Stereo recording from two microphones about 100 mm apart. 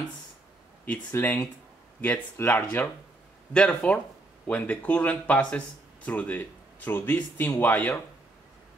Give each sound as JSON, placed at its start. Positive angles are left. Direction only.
{"t": 0.8, "sound": "speech", "side_deg": 15}